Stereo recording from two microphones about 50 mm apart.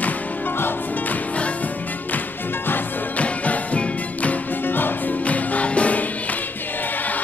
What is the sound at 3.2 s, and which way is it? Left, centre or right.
Music, left.